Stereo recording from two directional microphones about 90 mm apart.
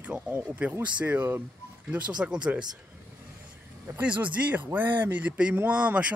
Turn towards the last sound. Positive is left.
turn(degrees=-15)  # may be behind; listen again after turning